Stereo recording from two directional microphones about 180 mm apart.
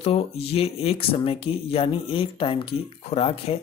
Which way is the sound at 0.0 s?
35° left (ahead or behind).